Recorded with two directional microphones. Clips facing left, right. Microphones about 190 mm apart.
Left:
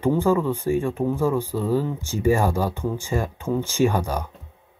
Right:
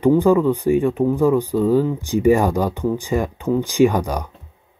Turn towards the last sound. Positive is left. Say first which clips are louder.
# right 5 dB
turn(degrees=-15)  # may be behind; listen again after turning